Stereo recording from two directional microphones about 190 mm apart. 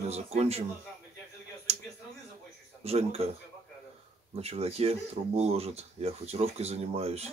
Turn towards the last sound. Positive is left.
turn(degrees=-35)  # may be behind; listen again after turning